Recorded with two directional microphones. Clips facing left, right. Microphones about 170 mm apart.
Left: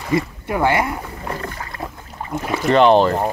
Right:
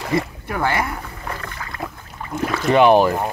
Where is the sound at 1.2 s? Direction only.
30° left (ahead or behind).